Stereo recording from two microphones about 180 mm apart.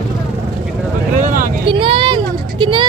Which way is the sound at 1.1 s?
45° right (ahead or behind).